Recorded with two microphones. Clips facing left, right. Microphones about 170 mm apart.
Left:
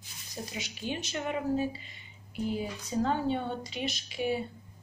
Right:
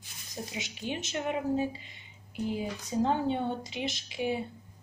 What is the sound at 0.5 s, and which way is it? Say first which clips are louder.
Speech: even; 20° right (ahead or behind).